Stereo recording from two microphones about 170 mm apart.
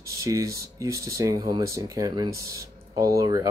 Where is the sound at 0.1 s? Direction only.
20° right (ahead or behind).